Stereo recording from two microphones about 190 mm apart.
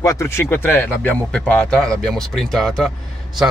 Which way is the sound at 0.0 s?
15° left (ahead or behind).